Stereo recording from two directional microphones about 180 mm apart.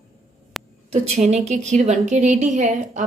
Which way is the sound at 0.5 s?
Centre (ahead or behind).